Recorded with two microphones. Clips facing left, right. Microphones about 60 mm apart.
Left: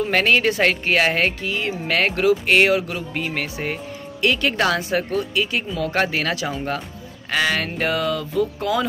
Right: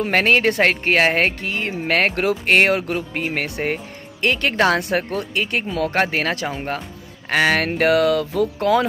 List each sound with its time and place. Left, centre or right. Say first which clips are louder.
0.0 s speech: right 1 dB; right
5.9 s speech: even; right
7.2 s speech: right 4 dB; right